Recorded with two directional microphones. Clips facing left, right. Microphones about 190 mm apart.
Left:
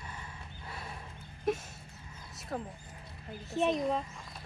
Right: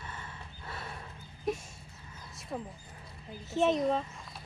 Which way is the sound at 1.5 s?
Centre (ahead or behind).